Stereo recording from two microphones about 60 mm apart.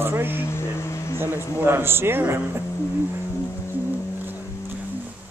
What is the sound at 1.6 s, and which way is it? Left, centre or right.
Speech, right.